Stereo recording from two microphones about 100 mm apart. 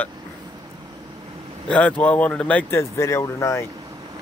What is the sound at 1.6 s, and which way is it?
Speech, 10° left (ahead or behind).